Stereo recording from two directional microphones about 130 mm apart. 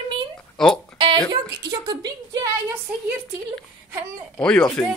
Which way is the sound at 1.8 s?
30° right (ahead or behind).